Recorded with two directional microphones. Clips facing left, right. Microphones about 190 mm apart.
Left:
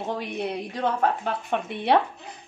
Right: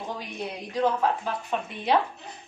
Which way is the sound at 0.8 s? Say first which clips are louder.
Left 1 dB; 65° left (ahead or behind).